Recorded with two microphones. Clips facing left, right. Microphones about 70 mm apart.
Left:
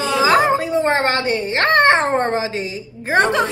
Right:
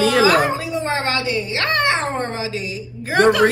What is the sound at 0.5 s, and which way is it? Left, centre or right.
A woman's voice, left.